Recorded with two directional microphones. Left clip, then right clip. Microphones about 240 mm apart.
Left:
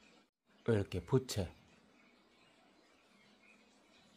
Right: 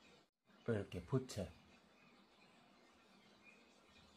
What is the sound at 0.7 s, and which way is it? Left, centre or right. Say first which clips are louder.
Speech: left 8 dB; left.